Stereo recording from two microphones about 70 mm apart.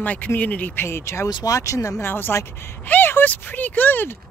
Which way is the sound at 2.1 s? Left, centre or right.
Left.